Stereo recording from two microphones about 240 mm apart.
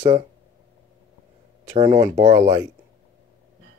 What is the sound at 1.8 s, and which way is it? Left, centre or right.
Speech, centre.